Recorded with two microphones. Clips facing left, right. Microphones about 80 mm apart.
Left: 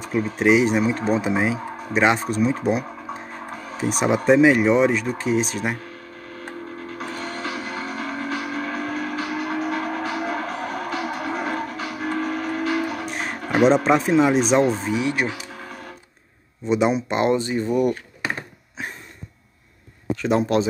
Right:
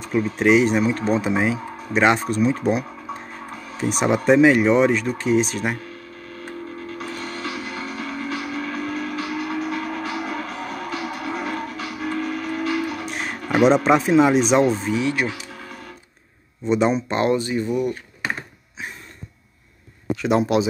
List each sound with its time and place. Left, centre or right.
0.0 s speech: centre
7.0 s music: left
8.4 s train: left
9.2 s music: left
12.6 s train: left
13.0 s music: centre
13.7 s speech: centre
15.0 s speech: centre
16.6 s speech: centre
17.2 s speech: left
18.8 s cough: left
20.2 s speech: centre